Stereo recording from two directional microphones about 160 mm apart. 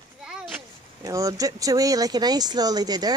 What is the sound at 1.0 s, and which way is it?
Speech, 20° right (ahead or behind).